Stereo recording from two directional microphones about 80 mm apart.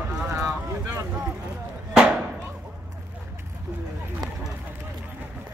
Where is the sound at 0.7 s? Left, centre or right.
Right.